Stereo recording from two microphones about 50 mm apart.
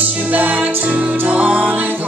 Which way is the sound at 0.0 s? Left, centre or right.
Right.